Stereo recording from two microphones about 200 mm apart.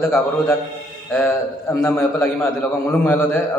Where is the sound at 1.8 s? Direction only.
10° left (ahead or behind).